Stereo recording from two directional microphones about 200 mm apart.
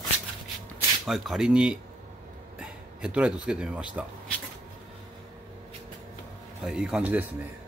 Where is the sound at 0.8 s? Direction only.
Centre (ahead or behind).